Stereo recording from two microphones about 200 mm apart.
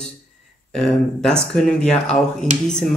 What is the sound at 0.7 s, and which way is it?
A woman's voice, centre (ahead or behind).